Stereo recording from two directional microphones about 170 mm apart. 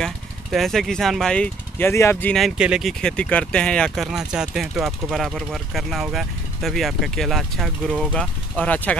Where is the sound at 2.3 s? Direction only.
5° right (ahead or behind).